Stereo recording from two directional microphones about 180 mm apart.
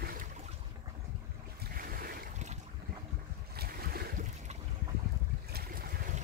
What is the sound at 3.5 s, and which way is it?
Boat, 60° right (ahead or behind).